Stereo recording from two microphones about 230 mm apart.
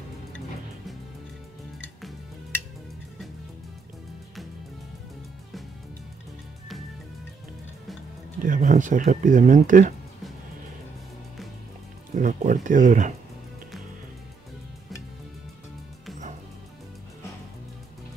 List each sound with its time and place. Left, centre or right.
2.0 s music: centre
8.4 s speech: right
12.2 s speech: right